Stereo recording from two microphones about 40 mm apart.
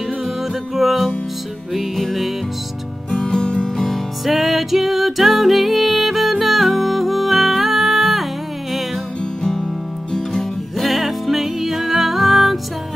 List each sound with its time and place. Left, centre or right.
0.7 s music: centre
3.1 s music: centre
3.8 s music: centre
9.4 s music: centre
10.8 s music: centre